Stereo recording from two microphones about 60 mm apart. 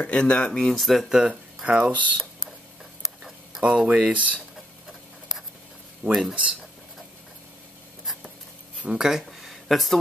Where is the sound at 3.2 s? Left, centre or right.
Centre.